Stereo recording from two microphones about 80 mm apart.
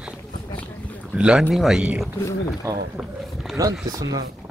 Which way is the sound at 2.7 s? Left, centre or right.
Right.